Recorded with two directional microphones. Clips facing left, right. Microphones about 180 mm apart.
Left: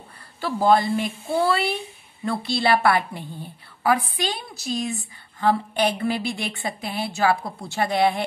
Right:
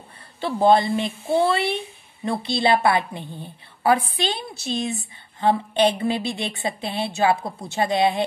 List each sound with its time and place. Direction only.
0.4 s a woman's voice: 25° right (ahead or behind)